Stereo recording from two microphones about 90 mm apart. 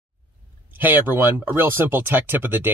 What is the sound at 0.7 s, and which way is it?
Speech, 20° right (ahead or behind).